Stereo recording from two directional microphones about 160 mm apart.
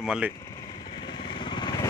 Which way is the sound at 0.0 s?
5° right (ahead or behind).